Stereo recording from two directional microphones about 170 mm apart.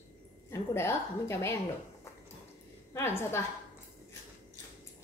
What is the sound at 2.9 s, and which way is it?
Speech, 15° left (ahead or behind).